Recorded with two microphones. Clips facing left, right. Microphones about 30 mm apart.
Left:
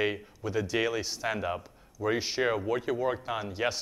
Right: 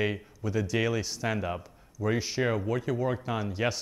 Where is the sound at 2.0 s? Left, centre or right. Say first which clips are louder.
Even; left.